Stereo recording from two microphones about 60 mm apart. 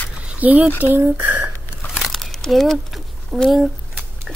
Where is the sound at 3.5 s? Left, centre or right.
Centre.